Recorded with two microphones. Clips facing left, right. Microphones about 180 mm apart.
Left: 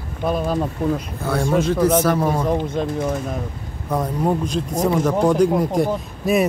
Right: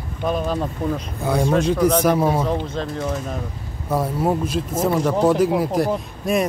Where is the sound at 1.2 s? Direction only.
15° right (ahead or behind).